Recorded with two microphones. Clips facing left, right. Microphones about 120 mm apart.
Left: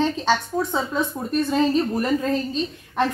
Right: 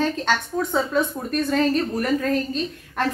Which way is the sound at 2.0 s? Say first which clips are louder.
Even; 15° left (ahead or behind).